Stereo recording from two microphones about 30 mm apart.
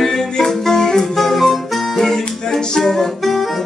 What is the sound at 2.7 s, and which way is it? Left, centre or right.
Music, centre.